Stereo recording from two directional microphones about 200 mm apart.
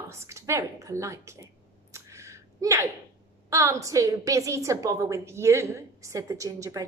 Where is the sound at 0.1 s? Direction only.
15° right (ahead or behind).